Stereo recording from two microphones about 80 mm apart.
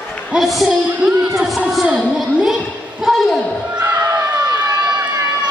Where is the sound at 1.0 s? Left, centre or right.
Centre.